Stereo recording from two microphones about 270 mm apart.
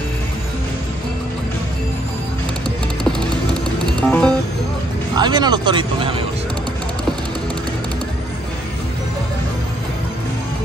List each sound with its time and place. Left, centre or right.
3.0 s music: centre
5.1 s speech: centre